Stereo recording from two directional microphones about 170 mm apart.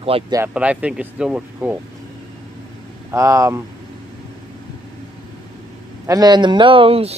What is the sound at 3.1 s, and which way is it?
Speech, 20° right (ahead or behind).